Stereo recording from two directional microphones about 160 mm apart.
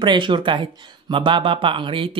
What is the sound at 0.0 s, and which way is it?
Speech, 30° right (ahead or behind).